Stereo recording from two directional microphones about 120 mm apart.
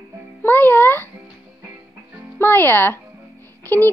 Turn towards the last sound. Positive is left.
turn(degrees=15)  # may be behind; listen again after turning